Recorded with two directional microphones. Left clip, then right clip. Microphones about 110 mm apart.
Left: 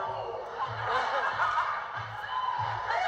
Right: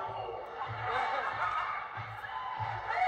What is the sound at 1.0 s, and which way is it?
Snicker, 30° left (ahead or behind).